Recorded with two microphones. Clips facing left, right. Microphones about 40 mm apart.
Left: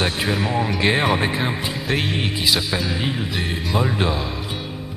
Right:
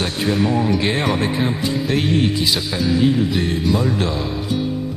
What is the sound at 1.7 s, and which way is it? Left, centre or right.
Music, centre.